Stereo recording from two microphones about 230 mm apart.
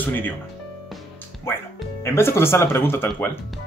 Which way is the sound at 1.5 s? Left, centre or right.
Centre.